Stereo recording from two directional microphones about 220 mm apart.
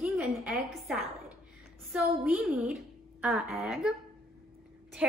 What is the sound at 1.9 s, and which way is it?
A woman's voice, 5° right (ahead or behind).